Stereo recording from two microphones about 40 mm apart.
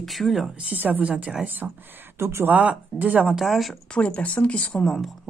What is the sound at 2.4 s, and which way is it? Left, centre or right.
Speech, right.